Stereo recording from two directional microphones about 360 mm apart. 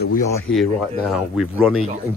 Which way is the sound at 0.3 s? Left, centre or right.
Centre.